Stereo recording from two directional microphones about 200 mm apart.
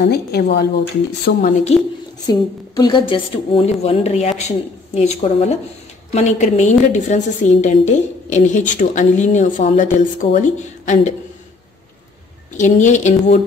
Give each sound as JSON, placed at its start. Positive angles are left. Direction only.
{"t": 0.0, "sound": "speech", "side_deg": 50}
{"t": 1.7, "sound": "a woman's voice", "side_deg": 30}
{"t": 2.2, "sound": "a woman's voice", "side_deg": 20}
{"t": 12.5, "sound": "a woman's voice", "side_deg": 40}